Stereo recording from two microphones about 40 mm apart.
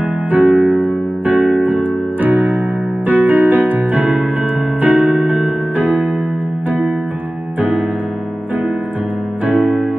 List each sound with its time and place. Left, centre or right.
0.3 s keyboard: right
4.8 s electric piano: right
9.5 s music: right